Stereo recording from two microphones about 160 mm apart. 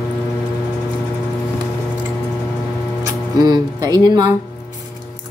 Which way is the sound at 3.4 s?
25° right (ahead or behind).